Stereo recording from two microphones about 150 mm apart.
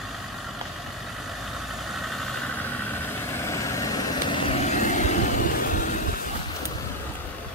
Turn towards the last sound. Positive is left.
turn(degrees=60)  # may be behind; listen again after turning